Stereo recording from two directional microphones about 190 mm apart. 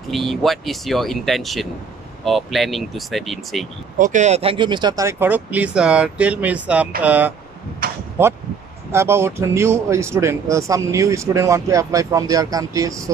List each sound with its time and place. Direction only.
0.1 s speech: centre (ahead or behind)
4.0 s speech: 40° right (ahead or behind); by 7.3 s 10° right (ahead or behind)
7.8 s arrow: 50° right (ahead or behind)
8.9 s speech: 15° right (ahead or behind)